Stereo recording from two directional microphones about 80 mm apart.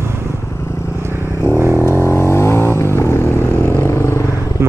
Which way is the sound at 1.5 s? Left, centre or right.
Right.